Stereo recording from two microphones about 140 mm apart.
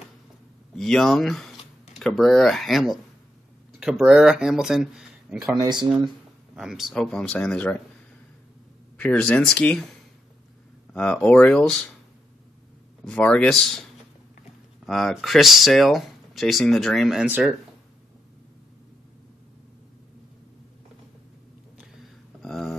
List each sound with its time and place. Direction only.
0.7 s speech: centre (ahead or behind)
5.6 s speech: 30° right (ahead or behind)
6.5 s speech: centre (ahead or behind)
8.9 s speech: 10° left (ahead or behind)
10.9 s speech: 5° left (ahead or behind)
13.0 s speech: 5° left (ahead or behind)
14.9 s speech: centre (ahead or behind)
22.4 s a sound: centre (ahead or behind)